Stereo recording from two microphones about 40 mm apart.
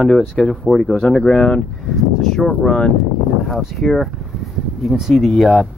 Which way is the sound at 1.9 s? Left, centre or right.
Centre.